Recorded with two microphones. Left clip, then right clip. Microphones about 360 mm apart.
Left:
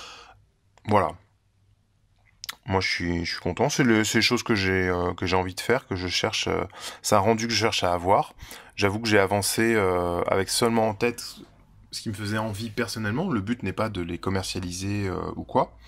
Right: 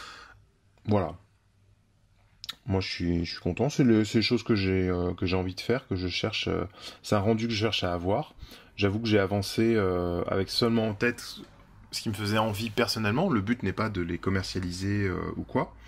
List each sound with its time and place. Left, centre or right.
0.0 s a sound: centre
2.4 s clicking: centre
3.2 s speech: centre